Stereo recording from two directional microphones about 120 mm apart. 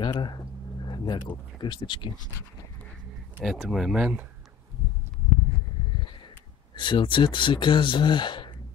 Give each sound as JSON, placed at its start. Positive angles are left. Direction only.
{"t": 0.0, "sound": "speech", "side_deg": 40}
{"t": 3.4, "sound": "speech", "side_deg": 0}
{"t": 6.7, "sound": "speech", "side_deg": 45}